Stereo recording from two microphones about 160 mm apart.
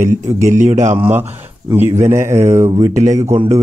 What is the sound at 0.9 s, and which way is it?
Speech, 10° right (ahead or behind).